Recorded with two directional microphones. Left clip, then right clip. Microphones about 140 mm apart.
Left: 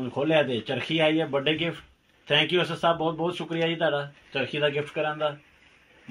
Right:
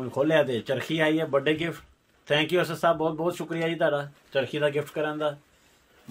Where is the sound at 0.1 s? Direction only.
35° right (ahead or behind).